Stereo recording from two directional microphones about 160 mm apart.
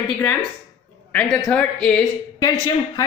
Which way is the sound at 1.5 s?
10° left (ahead or behind).